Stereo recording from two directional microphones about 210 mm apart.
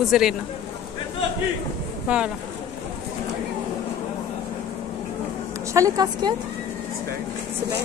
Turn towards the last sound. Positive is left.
turn(degrees=-20)  # may be behind; listen again after turning